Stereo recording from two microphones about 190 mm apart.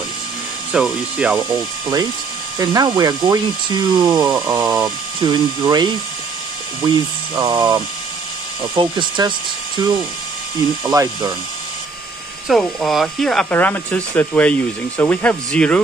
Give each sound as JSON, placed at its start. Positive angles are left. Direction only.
{"t": 0.7, "sound": "speech", "side_deg": -5}
{"t": 2.6, "sound": "speech", "side_deg": -20}
{"t": 7.3, "sound": "speech", "side_deg": -20}
{"t": 12.4, "sound": "speech", "side_deg": 0}